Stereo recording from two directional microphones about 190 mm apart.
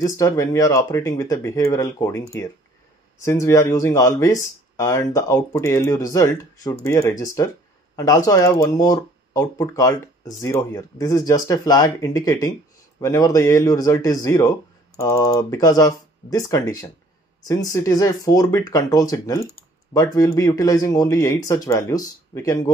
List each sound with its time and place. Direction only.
0.0 s speech: 15° left (ahead or behind)